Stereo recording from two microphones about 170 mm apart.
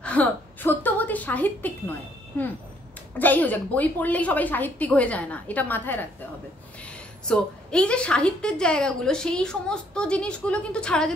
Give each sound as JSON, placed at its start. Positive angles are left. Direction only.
{"t": 0.0, "sound": "a woman's voice", "side_deg": 10}
{"t": 7.2, "sound": "a woman's voice", "side_deg": 5}